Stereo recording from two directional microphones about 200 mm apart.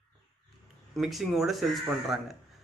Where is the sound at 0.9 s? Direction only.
Centre (ahead or behind).